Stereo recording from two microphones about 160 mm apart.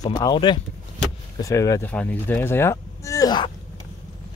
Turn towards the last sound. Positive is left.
turn(degrees=25)  # may be behind; listen again after turning